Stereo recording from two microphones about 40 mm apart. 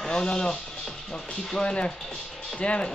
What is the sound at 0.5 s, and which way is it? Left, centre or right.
Music, centre.